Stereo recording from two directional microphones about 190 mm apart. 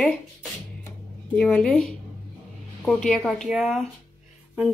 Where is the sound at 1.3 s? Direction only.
5° left (ahead or behind).